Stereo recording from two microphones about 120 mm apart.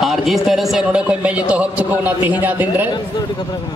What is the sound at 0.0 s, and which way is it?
A man's voice, centre (ahead or behind).